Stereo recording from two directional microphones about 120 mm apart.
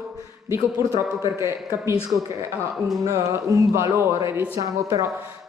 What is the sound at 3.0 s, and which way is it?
Speech, 25° right (ahead or behind).